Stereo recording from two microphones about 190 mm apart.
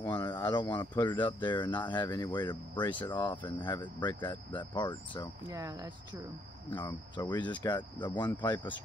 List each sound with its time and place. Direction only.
0.0 s speech: 25° left (ahead or behind)
5.5 s speech: 20° right (ahead or behind)
6.7 s speech: 25° left (ahead or behind)